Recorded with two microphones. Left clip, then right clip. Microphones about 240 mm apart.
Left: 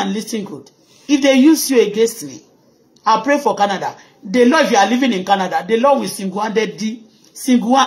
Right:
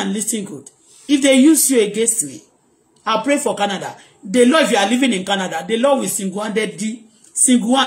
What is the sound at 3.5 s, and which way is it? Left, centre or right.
A woman's voice, centre.